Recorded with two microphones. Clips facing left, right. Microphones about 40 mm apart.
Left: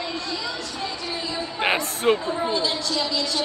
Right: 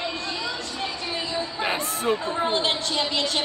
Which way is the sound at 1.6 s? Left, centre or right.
Left.